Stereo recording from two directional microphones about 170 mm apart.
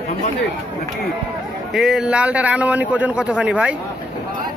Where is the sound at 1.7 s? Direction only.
5° right (ahead or behind).